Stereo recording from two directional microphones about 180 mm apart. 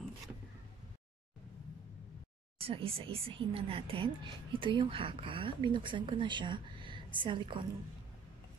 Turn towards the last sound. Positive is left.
turn(degrees=-25)  # may be behind; listen again after turning